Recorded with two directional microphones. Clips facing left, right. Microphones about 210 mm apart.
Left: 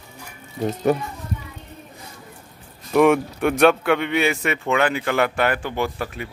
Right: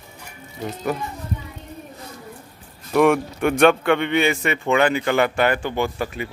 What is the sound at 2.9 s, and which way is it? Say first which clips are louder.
A man's voice: left 1 dB; centre (ahead or behind).